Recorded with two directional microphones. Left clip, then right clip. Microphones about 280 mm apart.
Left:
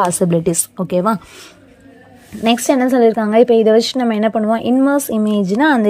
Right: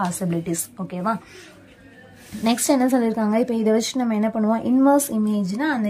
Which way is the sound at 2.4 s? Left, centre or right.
Centre.